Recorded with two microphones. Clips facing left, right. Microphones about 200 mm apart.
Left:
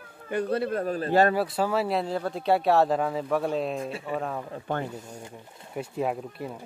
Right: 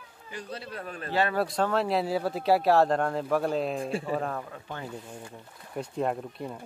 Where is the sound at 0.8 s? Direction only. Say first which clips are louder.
Left 5 dB; 40° left (ahead or behind).